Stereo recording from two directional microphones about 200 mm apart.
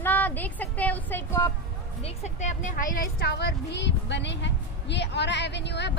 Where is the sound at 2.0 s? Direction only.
35° left (ahead or behind).